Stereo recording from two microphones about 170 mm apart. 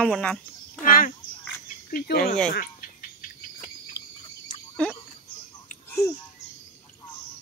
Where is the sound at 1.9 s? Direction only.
65° left (ahead or behind).